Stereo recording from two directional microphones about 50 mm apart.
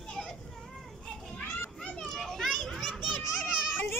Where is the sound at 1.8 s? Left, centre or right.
Left.